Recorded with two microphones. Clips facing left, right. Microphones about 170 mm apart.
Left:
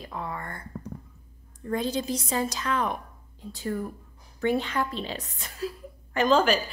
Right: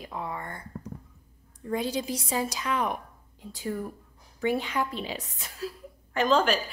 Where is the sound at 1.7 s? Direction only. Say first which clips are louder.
Left 1 dB; 10° right (ahead or behind).